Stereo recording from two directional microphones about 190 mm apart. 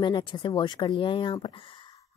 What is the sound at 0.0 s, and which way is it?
A woman's voice, 25° left (ahead or behind).